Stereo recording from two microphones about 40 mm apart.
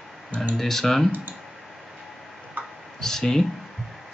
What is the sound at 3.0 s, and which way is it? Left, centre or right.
Speech, centre.